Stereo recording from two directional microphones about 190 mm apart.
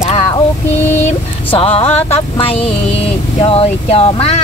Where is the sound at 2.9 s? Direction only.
30° left (ahead or behind).